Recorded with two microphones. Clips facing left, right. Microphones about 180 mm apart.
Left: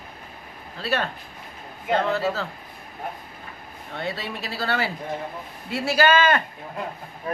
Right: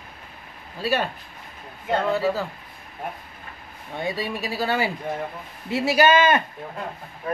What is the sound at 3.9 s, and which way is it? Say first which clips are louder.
A man's voice: right 3 dB; 15° right (ahead or behind).